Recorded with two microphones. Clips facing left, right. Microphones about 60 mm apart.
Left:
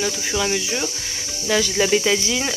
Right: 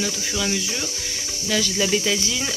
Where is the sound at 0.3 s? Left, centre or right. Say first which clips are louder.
Left 5 dB; left.